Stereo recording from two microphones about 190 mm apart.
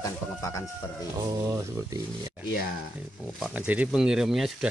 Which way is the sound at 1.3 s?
15° right (ahead or behind).